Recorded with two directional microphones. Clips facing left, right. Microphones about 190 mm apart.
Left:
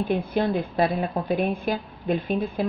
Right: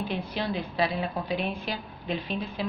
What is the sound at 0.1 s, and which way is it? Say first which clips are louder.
A woman's voice: left 7 dB; 50° left (ahead or behind).